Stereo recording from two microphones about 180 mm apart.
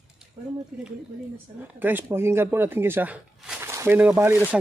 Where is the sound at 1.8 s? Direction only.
10° right (ahead or behind).